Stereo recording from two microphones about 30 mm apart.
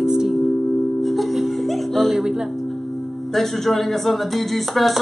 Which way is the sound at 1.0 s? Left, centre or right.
Centre.